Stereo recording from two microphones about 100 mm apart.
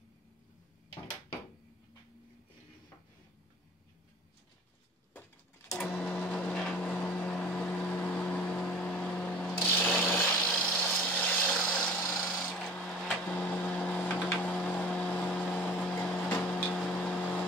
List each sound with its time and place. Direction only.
6.1 s vehicle: 15° left (ahead or behind)
9.6 s ratchet: 20° left (ahead or behind)
9.9 s a sound: 15° left (ahead or behind)
11.5 s filing: 15° left (ahead or behind)
13.2 s printer: 10° left (ahead or behind)
14.4 s a sound: 10° left (ahead or behind)